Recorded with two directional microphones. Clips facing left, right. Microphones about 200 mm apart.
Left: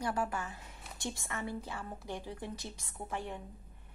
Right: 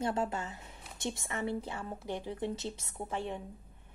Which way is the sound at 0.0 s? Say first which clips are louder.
Right 2 dB; 25° right (ahead or behind).